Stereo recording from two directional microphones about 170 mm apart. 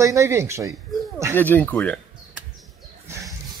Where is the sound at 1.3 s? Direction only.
10° left (ahead or behind).